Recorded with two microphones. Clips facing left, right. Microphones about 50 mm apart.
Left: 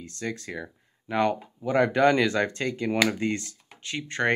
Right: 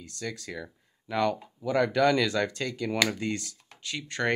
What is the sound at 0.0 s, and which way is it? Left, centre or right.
Speech, left.